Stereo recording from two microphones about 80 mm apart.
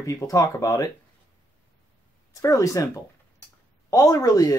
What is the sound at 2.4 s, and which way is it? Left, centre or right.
Speech, left.